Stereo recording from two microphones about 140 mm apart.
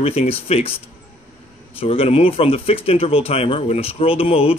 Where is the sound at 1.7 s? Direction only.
40° left (ahead or behind).